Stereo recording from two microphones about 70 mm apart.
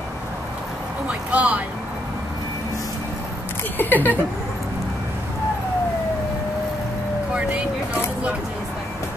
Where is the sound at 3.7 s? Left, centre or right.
Left.